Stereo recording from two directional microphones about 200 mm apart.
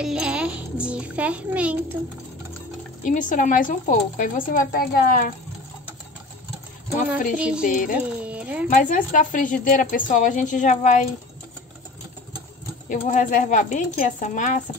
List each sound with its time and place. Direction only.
0.0 s a child's voice: 5° right (ahead or behind)
3.0 s speech: 40° left (ahead or behind)
7.3 s a child's voice: 5° right (ahead or behind)
7.6 s speech: 45° left (ahead or behind)
8.2 s speech: 5° right (ahead or behind)
8.6 s a woman's voice: 40° left (ahead or behind)
12.8 s a woman's voice: 40° left (ahead or behind)